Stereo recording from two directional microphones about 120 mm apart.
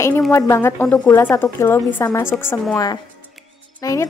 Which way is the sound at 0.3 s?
25° left (ahead or behind).